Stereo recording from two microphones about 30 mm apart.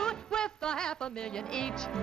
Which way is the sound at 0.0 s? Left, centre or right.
Left.